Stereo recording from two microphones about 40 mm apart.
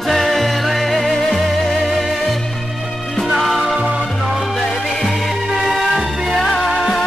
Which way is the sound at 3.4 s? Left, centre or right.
Centre.